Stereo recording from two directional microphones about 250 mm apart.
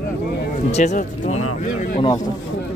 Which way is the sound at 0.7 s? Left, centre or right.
Left.